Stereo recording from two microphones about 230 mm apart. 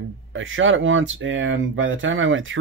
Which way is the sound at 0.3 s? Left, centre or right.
Right.